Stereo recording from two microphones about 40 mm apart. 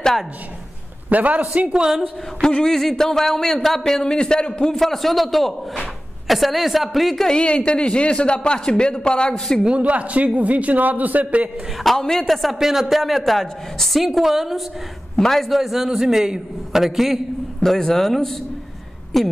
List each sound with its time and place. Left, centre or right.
1.1 s a man's voice: right
2.4 s speech: centre
4.0 s a man's voice: centre
4.7 s a woman's voice: centre
7.2 s a man's voice: left
9.8 s a man's voice: right
11.8 s a woman's voice: centre
12.5 s a man's voice: centre
15.1 s a man's voice: centre
17.6 s a woman's voice: centre